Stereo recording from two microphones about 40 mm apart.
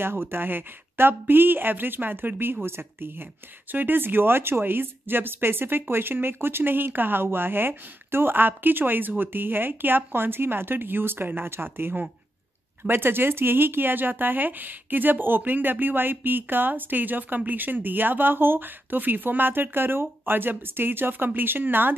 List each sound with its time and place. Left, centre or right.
0.0 s speech: right
3.7 s speech: right